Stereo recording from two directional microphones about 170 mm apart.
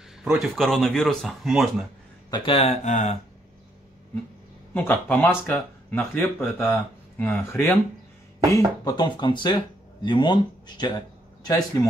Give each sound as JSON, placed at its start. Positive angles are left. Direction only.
{"t": 0.2, "sound": "speech", "side_deg": 0}
{"t": 2.3, "sound": "speech", "side_deg": 30}
{"t": 4.7, "sound": "speech", "side_deg": 10}
{"t": 8.5, "sound": "speech", "side_deg": 20}